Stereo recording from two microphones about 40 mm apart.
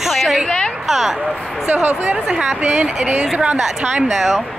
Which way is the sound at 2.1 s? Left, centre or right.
Right.